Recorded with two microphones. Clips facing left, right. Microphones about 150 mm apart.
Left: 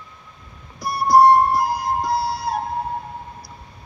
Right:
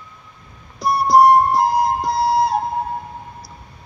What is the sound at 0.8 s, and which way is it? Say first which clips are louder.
Music: right 1 dB; 20° right (ahead or behind).